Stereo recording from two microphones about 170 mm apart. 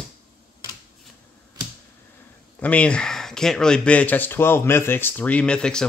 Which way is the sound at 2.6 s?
5° left (ahead or behind).